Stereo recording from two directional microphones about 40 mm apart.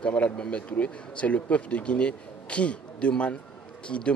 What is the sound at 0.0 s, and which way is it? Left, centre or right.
Speech, left.